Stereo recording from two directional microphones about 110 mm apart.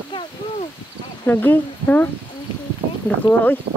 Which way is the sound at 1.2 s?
15° left (ahead or behind).